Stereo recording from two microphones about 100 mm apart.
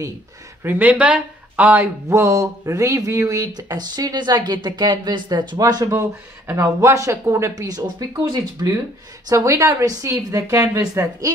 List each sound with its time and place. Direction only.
0.7 s speech: 15° right (ahead or behind)
2.0 s speech: 30° right (ahead or behind); by 5.6 s 50° right (ahead or behind)
5.6 s speech: 35° right (ahead or behind)